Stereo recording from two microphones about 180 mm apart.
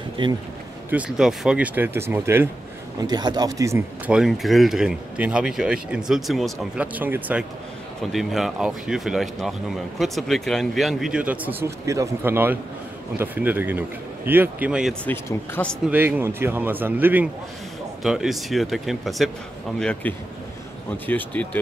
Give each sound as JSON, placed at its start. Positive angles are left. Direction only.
{"t": 0.2, "sound": "speech", "side_deg": -25}
{"t": 0.8, "sound": "a man's voice", "side_deg": -5}
{"t": 4.1, "sound": "a man's voice", "side_deg": 0}
{"t": 15.0, "sound": "speech", "side_deg": 10}
{"t": 15.9, "sound": "a man's voice", "side_deg": -10}